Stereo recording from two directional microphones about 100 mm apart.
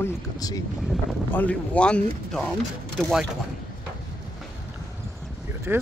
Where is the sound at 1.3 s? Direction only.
15° left (ahead or behind).